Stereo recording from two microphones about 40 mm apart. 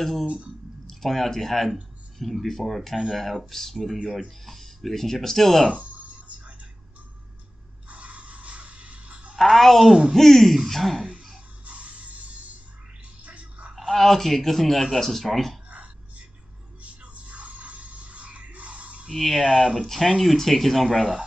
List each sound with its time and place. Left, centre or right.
0.0 s speech: centre
5.8 s a sound: right
7.9 s a sound: right
9.4 s speech: centre
11.6 s a sound: right
13.2 s music: right
13.7 s speech: centre
16.8 s music: right
19.1 s speech: centre